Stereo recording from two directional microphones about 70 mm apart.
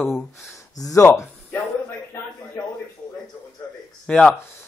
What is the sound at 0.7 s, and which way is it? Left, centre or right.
Speech, left.